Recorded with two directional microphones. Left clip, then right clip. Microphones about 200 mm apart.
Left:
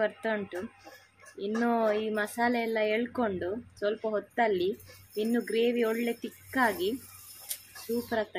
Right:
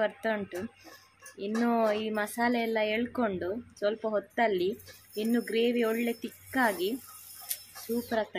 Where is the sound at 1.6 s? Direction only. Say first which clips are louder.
Even; 15° right (ahead or behind).